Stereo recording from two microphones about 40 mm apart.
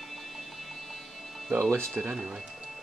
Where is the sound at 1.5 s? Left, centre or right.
Right.